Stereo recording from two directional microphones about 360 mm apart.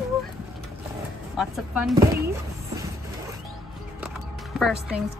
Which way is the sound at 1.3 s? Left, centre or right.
Centre.